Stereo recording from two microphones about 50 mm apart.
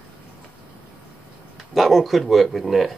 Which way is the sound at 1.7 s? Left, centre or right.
Centre.